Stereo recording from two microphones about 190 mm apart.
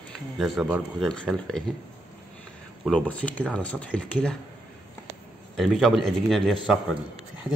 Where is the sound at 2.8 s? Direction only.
5° left (ahead or behind).